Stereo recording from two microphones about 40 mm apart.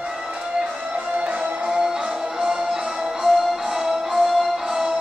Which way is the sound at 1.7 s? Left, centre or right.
Centre.